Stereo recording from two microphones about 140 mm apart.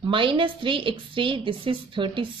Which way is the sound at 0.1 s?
40° right (ahead or behind).